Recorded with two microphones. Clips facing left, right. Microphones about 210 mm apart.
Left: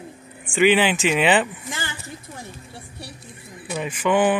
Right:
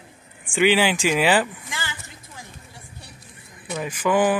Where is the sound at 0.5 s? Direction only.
Centre (ahead or behind).